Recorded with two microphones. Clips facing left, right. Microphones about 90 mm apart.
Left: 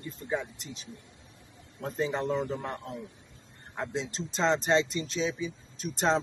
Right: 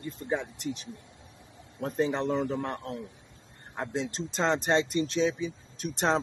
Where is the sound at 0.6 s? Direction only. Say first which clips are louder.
Right 8 dB; 60° right (ahead or behind).